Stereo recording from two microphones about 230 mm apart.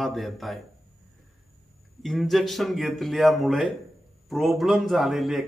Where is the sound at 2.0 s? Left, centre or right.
Centre.